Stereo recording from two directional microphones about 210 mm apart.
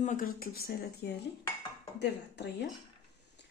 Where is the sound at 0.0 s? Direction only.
40° left (ahead or behind); by 2.5 s 55° left (ahead or behind).